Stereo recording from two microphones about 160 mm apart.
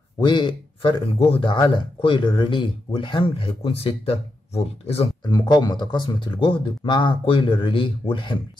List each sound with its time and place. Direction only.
0.2 s speech: 30° left (ahead or behind)
5.2 s speech: 25° left (ahead or behind)